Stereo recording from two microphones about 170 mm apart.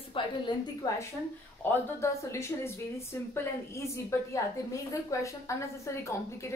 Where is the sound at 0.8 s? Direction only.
20° left (ahead or behind).